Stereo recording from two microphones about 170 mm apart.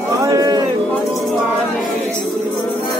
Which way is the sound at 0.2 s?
20° right (ahead or behind).